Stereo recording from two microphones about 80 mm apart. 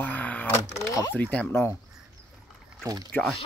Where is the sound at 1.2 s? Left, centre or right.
Centre.